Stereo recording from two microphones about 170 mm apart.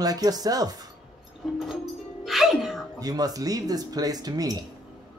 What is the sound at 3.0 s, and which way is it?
Speech, 20° right (ahead or behind).